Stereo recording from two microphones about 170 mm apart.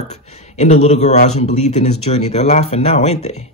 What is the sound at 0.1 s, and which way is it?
Speech, 40° left (ahead or behind).